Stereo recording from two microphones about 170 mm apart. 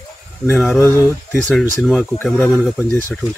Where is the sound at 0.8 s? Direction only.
15° left (ahead or behind).